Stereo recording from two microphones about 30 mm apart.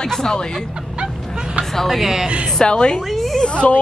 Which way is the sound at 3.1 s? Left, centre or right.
Centre.